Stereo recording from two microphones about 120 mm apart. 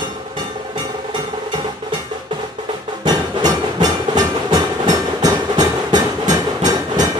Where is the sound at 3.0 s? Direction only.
35° right (ahead or behind).